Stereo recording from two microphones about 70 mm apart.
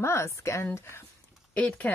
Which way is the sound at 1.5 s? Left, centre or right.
Left.